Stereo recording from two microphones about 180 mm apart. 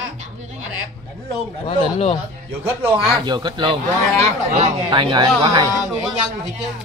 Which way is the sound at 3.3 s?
25° right (ahead or behind).